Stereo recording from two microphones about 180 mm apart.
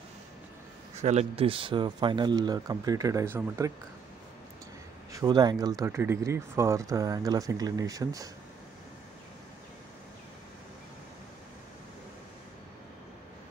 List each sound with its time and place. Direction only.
0.9 s speech: 35° right (ahead or behind); by 3.7 s 15° right (ahead or behind)
5.1 s speech: 20° right (ahead or behind)